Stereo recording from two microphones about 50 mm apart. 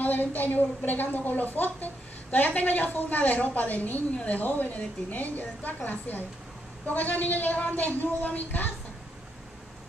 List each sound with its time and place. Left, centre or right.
0.0 s a woman's voice: left